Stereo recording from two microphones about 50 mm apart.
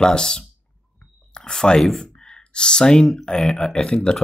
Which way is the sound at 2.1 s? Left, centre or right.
Centre.